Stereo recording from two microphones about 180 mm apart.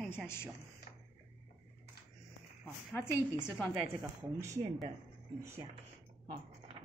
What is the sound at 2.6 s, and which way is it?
Speech, 10° left (ahead or behind).